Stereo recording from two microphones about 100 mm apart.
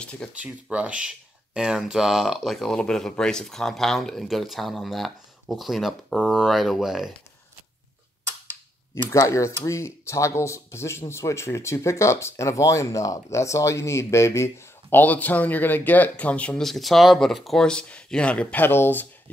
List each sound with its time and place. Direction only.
0.3 s speech: 15° right (ahead or behind)
8.9 s speech: 30° left (ahead or behind)